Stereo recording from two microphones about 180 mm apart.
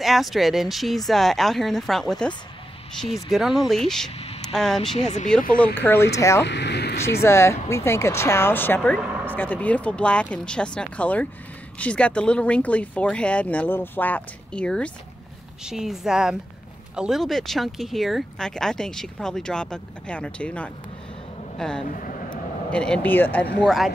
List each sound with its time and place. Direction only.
0.0 s speech: centre (ahead or behind); by 6.4 s 15° left (ahead or behind)
6.4 s speech: 75° left (ahead or behind)
7.2 s speech: 15° left (ahead or behind)
8.9 s speech: 5° right (ahead or behind)
9.2 s speech: 10° left (ahead or behind)